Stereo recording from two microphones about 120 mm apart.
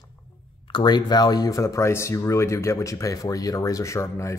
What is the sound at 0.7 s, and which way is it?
Speech, 40° left (ahead or behind).